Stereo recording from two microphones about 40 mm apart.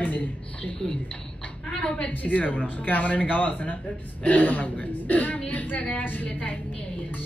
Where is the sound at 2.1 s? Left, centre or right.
Left.